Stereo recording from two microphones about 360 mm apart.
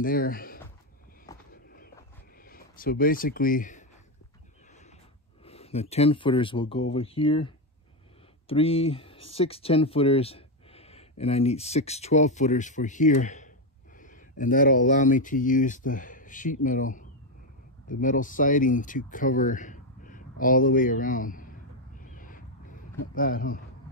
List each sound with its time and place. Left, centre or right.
0.0 s speech: left
1.5 s walk: left
2.4 s speech: left
5.4 s speech: centre
22.0 s crow: left